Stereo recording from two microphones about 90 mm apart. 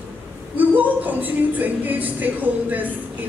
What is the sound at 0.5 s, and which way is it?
Speech, 20° right (ahead or behind).